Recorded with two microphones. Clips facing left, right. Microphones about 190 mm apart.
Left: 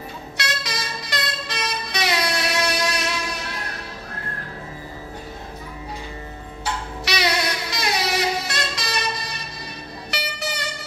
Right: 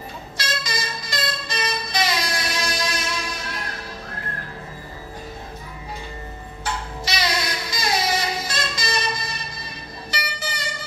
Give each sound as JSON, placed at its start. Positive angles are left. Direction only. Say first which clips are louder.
{"t": 0.4, "sound": "vehicle", "louder": "right 1 dB", "side_deg": 65}
{"t": 7.1, "sound": "music", "louder": "left 3 dB", "side_deg": 65}
{"t": 10.1, "sound": "vehicle", "louder": "left 2 dB", "side_deg": 70}